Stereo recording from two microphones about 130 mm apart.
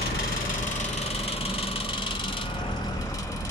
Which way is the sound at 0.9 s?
50° left (ahead or behind).